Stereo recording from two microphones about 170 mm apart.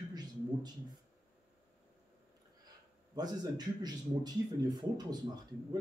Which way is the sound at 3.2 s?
25° right (ahead or behind).